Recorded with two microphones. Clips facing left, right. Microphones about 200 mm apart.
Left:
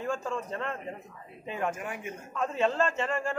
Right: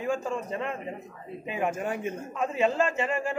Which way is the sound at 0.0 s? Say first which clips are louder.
Right 3 dB; 10° right (ahead or behind).